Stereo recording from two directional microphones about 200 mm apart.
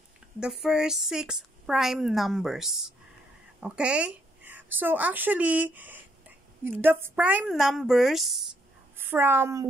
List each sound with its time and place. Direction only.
0.4 s a woman's voice: 5° right (ahead or behind)